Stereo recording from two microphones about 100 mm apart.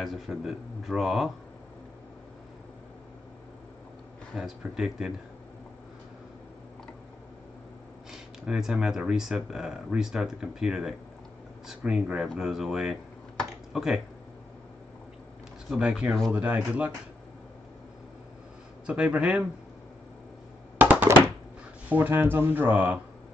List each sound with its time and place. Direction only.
0.0 s speech: 5° right (ahead or behind)
4.4 s speech: 5° right (ahead or behind)
8.1 s speech: 5° right (ahead or behind)
15.7 s speech: 5° right (ahead or behind)
18.9 s speech: 10° right (ahead or behind)
20.7 s a sound: 15° right (ahead or behind)
21.8 s speech: 20° right (ahead or behind)